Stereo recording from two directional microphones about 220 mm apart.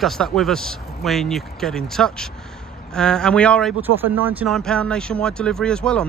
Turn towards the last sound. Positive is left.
turn(degrees=5)  # may be behind; listen again after turning